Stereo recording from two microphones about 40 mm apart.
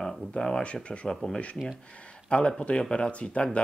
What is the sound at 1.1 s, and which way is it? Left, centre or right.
Speech, centre.